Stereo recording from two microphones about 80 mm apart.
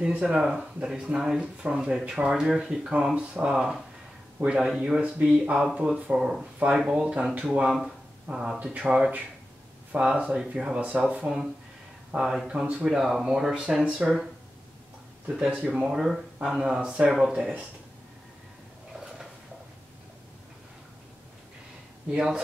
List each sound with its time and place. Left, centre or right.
0.0 s speech: centre
8.7 s speech: centre
15.2 s speech: centre
22.1 s speech: centre